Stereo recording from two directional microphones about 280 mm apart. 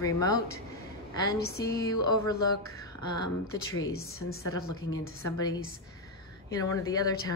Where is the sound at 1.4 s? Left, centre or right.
Left.